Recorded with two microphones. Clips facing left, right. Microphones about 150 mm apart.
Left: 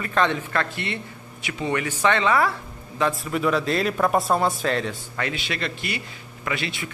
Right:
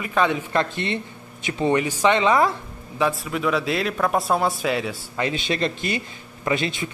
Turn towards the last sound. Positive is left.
turn(degrees=-25)  # may be behind; listen again after turning